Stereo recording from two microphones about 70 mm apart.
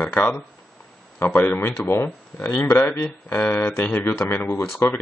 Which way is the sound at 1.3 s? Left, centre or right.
Left.